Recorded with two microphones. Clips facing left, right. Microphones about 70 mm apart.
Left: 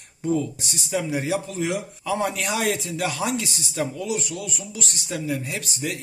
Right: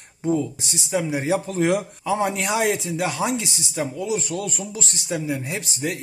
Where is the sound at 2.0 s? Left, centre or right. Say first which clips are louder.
Right 1 dB; right.